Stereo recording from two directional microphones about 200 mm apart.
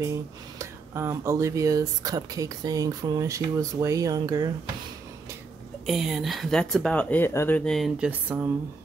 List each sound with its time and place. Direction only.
0.6 s speech: 15° right (ahead or behind)
5.9 s speech: 5° right (ahead or behind)